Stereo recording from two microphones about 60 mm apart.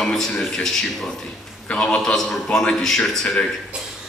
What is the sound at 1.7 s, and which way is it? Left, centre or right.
Speech, centre.